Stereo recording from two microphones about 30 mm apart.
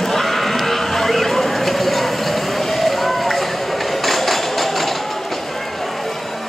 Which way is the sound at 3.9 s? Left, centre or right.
Centre.